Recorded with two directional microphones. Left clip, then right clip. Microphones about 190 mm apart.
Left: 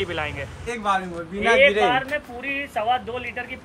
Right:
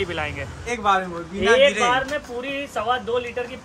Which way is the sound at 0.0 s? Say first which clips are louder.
Right 1 dB; 10° right (ahead or behind).